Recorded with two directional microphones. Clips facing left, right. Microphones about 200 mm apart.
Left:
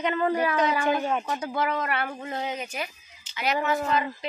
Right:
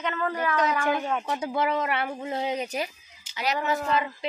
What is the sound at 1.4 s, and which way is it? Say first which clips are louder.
Speech: right 4 dB; 25° right (ahead or behind).